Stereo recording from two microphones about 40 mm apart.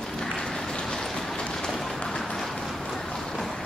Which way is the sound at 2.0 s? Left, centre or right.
Centre.